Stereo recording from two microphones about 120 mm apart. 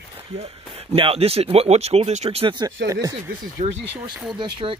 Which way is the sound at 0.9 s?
50° right (ahead or behind).